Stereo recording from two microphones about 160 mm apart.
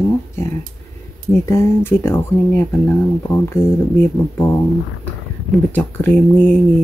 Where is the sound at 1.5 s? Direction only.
15° left (ahead or behind).